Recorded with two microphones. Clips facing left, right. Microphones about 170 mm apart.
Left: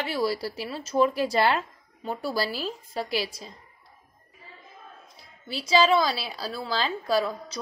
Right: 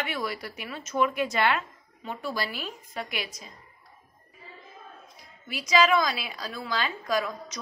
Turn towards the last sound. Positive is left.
turn(degrees=30)  # may be behind; listen again after turning